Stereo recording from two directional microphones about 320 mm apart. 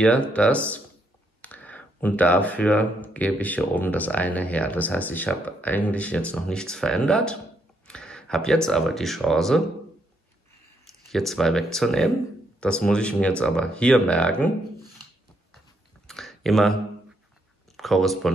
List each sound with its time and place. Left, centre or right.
0.0 s speech: centre
11.1 s speech: centre
16.1 s a sound: centre
17.7 s speech: centre